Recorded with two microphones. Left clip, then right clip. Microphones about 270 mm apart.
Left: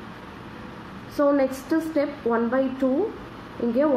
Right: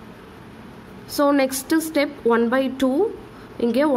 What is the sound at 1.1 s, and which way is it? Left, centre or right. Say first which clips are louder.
A woman's voice: right 2 dB; right.